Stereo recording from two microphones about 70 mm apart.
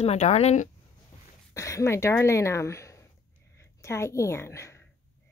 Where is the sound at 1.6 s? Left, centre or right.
Left.